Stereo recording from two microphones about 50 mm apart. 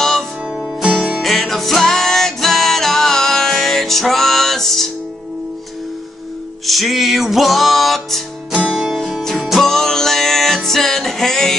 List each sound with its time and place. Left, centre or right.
0.6 s music: centre
1.2 s music: centre
6.6 s music: centre
8.5 s music: centre
9.5 s music: centre